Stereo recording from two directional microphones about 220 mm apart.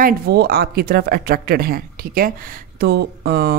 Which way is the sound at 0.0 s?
45° right (ahead or behind).